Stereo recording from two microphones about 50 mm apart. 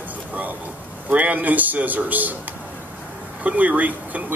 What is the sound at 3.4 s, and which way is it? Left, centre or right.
Speech, right.